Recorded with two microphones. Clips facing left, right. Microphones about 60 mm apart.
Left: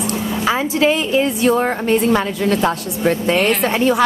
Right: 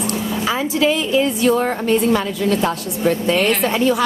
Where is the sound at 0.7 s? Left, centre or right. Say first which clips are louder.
Even; left.